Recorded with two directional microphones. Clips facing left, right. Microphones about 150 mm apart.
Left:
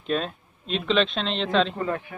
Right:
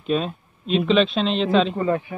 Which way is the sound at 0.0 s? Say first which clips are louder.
Right 4 dB; 5° right (ahead or behind).